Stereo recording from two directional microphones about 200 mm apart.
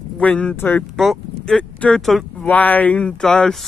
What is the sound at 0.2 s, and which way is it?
Speech, 5° left (ahead or behind).